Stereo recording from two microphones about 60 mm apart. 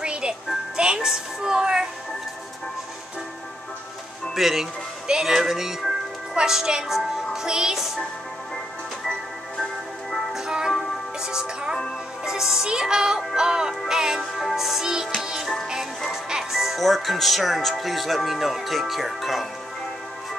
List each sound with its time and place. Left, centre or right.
0.0 s music: centre
4.4 s speech: centre
10.1 s music: centre
16.3 s speech: centre